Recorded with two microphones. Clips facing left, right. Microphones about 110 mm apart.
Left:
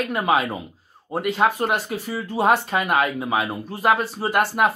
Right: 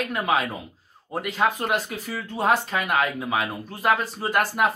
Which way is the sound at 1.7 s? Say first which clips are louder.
Left 2 dB; 5° left (ahead or behind).